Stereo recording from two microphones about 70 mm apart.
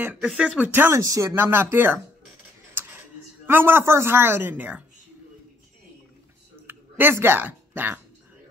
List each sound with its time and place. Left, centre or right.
0.0 s speech: centre
0.6 s a woman's voice: right
0.9 s speech: right
1.3 s a woman's voice: right
2.7 s tick-tock: right
3.4 s a woman's voice: right
6.7 s speech: right